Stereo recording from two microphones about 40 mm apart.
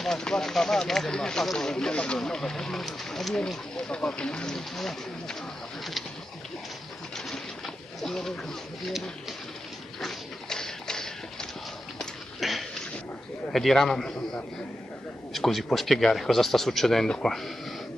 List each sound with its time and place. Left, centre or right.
0.0 s speech: centre
1.4 s speech: centre
1.7 s speech: centre
3.7 s speech: left
4.5 s speech: centre
7.2 s pigeon: centre
9.9 s a sound: centre
12.4 s a sound: centre
13.5 s speech: centre
15.3 s speech: centre